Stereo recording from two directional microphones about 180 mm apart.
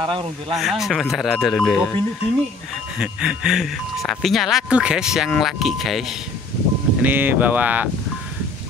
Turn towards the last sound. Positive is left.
turn(degrees=-10)  # may be behind; listen again after turning